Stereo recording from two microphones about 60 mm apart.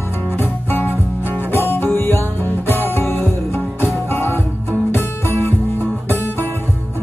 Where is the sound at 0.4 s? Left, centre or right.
Left.